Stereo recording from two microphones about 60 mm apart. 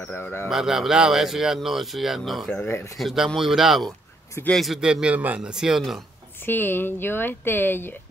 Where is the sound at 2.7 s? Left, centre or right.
Left.